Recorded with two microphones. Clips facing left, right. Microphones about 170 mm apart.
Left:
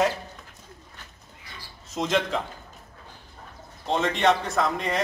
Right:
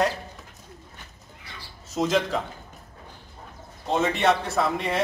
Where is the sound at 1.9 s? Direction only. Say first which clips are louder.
Right 2 dB; centre (ahead or behind).